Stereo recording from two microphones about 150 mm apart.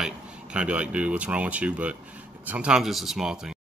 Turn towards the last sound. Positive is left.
turn(degrees=-5)  # may be behind; listen again after turning